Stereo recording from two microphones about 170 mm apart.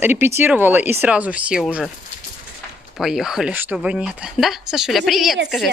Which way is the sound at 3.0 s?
Centre (ahead or behind).